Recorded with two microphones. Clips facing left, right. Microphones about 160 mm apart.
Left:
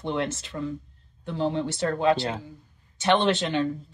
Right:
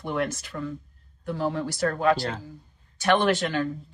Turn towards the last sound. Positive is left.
turn(degrees=20)  # may be behind; listen again after turning